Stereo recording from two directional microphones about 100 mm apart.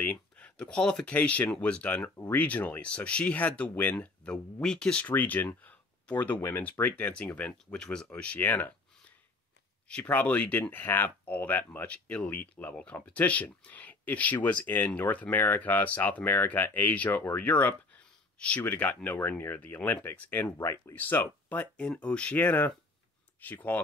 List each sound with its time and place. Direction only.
0.0 s a sound: 15° left (ahead or behind)
1.1 s speech: 15° left (ahead or behind)
9.8 s speech: 15° left (ahead or behind)